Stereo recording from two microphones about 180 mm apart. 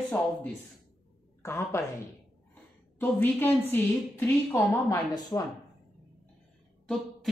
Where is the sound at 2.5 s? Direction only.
10° left (ahead or behind).